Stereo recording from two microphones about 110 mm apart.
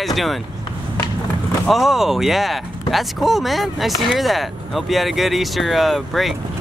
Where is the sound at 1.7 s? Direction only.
Centre (ahead or behind).